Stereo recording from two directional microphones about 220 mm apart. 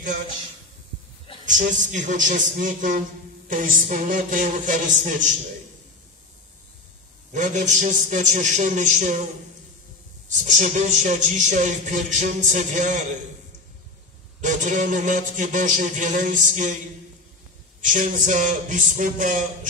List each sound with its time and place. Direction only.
1.4 s speech: 35° right (ahead or behind)
7.3 s speech: 35° right (ahead or behind)
10.3 s speech: 35° right (ahead or behind)
14.4 s speech: 35° right (ahead or behind)
17.8 s speech: 35° right (ahead or behind)